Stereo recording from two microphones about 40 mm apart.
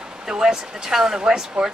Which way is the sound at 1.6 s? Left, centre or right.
Right.